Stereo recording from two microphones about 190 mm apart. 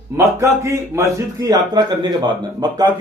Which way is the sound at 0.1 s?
15° right (ahead or behind).